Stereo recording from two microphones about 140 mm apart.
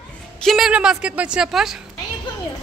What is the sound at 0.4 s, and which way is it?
A woman's voice, centre (ahead or behind).